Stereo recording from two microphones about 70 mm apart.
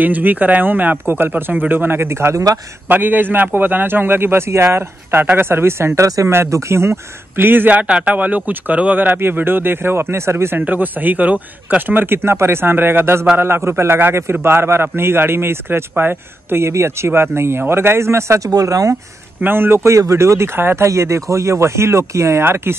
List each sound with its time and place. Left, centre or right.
0.0 s a man's voice: right
2.9 s a man's voice: right
6.0 s speech: right
6.3 s a man's voice: right
10.6 s a man's voice: right
18.5 s speech: right
19.4 s a man's voice: right